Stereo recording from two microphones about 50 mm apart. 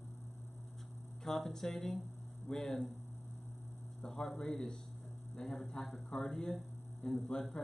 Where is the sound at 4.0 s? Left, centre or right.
Centre.